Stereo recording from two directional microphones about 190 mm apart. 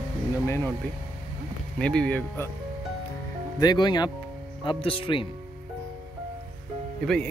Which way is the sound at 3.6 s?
20° left (ahead or behind).